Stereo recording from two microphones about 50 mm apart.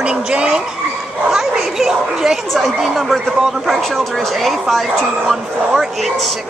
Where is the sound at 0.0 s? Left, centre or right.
Centre.